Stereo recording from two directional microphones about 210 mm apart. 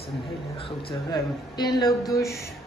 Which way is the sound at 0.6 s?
25° left (ahead or behind).